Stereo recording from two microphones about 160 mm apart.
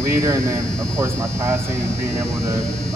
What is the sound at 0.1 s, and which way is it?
Speech, 15° right (ahead or behind).